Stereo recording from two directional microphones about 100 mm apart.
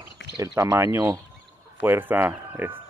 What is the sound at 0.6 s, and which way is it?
Speech, 25° right (ahead or behind).